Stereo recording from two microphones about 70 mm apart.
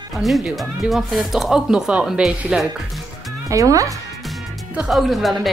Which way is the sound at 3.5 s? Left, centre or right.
Right.